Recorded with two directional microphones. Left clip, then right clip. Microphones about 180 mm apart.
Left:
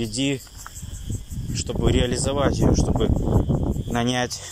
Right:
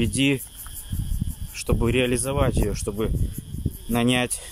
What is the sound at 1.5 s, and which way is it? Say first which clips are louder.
Speech: right 1 dB; 20° right (ahead or behind).